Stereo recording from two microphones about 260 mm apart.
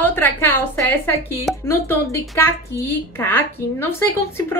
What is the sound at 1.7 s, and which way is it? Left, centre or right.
Speech, centre.